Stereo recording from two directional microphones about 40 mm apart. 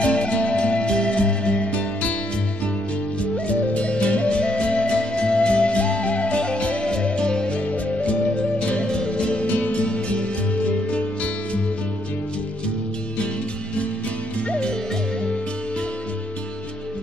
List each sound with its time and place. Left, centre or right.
0.0 s music: left
1.7 s music: left
3.2 s music: left
7.7 s music: left
14.5 s music: left